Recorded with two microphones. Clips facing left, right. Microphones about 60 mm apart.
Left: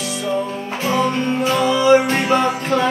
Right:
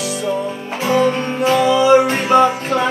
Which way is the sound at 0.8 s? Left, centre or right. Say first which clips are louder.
Right 3 dB; right.